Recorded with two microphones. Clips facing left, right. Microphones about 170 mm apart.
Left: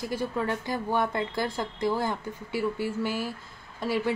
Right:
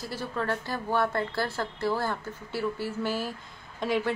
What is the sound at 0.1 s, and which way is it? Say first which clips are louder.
A woman's voice: left 1 dB; 10° left (ahead or behind).